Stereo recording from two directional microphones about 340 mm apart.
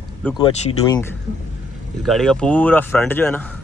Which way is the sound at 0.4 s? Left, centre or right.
Centre.